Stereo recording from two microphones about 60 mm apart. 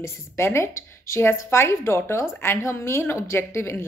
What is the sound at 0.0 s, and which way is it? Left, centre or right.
A woman's voice, left.